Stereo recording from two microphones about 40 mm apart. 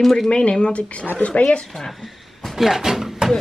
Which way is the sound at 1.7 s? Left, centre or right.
Centre.